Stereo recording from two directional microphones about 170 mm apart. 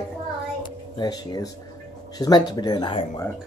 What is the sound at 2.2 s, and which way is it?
Speech, 25° left (ahead or behind).